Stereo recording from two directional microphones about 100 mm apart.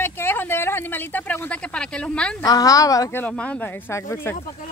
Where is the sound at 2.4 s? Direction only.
40° left (ahead or behind).